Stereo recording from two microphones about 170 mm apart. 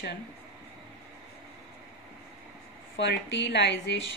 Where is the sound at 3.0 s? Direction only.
90° left.